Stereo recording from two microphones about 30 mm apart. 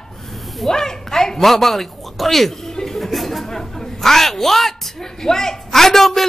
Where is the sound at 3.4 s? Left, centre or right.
Centre.